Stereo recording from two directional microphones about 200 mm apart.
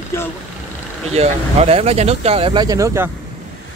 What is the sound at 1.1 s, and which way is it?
Speech, 30° right (ahead or behind).